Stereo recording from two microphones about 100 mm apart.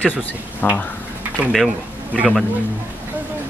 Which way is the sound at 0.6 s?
20° left (ahead or behind).